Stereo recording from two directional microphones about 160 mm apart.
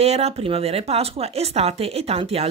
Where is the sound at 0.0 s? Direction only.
40° right (ahead or behind).